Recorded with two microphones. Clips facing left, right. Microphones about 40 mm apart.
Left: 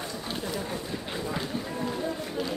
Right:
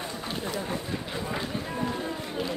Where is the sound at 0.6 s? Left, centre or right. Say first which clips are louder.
Right 1 dB; centre.